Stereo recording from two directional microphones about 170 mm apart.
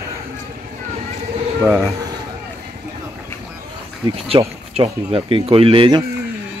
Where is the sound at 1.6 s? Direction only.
10° right (ahead or behind).